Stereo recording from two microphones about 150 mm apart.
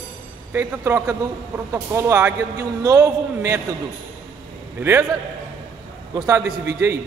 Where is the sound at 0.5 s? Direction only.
15° right (ahead or behind).